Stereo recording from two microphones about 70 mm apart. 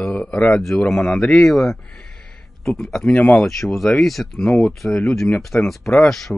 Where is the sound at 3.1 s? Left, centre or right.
Left.